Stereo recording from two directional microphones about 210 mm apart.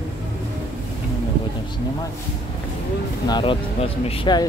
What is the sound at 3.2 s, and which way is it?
Speech, 20° left (ahead or behind).